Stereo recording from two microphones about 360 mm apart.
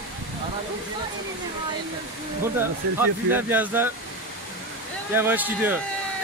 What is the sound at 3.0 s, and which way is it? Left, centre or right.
Speech, centre.